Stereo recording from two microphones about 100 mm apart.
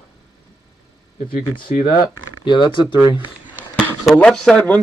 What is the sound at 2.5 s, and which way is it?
Speech, 55° left (ahead or behind).